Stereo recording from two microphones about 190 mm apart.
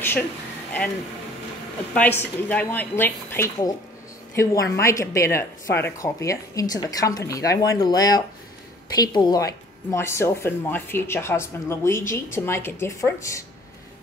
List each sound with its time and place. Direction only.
2.0 s a woman's voice: 10° left (ahead or behind)